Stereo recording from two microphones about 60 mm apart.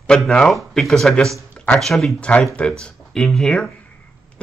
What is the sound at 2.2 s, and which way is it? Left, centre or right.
Speech, left.